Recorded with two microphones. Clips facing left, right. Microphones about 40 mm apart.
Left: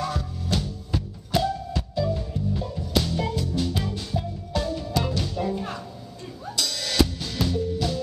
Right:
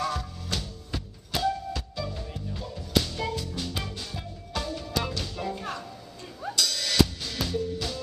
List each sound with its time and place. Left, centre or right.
0.0 s music: centre
1.8 s music: centre
2.7 s music: centre
5.3 s music: centre
6.5 s drum kit: centre